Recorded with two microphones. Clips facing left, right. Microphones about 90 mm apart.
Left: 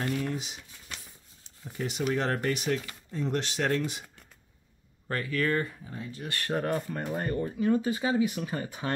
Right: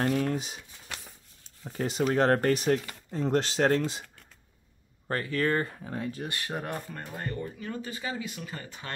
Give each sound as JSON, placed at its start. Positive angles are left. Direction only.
{"t": 0.0, "sound": "speech", "side_deg": -45}
{"t": 1.7, "sound": "speech", "side_deg": -40}
{"t": 5.0, "sound": "speech", "side_deg": -35}
{"t": 5.9, "sound": "speech", "side_deg": -60}
{"t": 6.4, "sound": "speech", "side_deg": -5}
{"t": 6.9, "sound": "speech", "side_deg": 15}
{"t": 7.3, "sound": "speech", "side_deg": 25}